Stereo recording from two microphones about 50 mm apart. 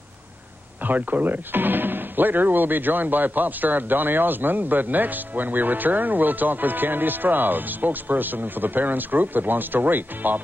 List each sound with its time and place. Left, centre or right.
0.8 s speech: right